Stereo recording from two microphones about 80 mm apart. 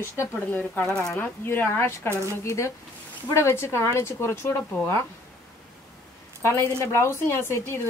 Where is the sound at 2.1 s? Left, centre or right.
Right.